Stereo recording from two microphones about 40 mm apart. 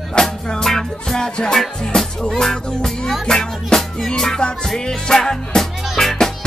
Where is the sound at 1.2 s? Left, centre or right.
Left.